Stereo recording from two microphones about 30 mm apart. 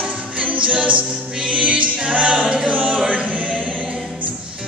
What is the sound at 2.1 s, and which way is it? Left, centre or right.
A capella, right.